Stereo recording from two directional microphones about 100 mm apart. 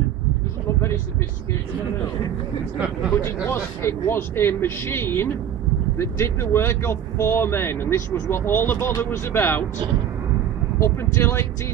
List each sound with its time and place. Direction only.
3.4 s speech: 25° left (ahead or behind)
10.8 s speech: 25° left (ahead or behind)